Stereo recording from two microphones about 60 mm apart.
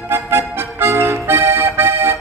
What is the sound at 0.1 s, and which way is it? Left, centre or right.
Accordion, right.